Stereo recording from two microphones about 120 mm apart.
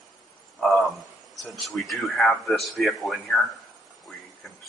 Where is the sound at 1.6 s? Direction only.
Centre (ahead or behind).